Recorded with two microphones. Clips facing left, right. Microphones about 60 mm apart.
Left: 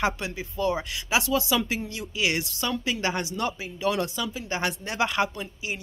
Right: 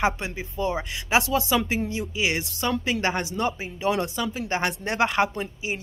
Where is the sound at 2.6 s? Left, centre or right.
Right.